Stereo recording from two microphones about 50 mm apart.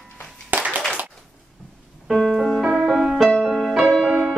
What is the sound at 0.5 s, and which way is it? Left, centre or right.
Clapping, right.